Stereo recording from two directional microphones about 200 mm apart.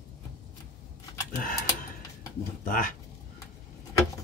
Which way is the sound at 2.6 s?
45° left (ahead or behind).